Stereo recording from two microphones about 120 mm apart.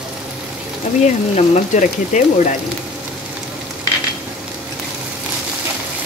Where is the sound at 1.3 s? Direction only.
85° left.